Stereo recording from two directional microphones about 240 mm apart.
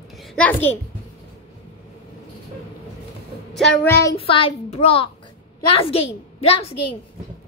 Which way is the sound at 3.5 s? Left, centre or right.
Centre.